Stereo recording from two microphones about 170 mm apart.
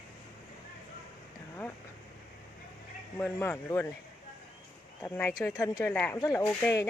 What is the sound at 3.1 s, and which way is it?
Speech, 10° left (ahead or behind).